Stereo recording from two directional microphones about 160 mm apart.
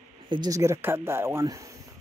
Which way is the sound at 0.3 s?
25° right (ahead or behind).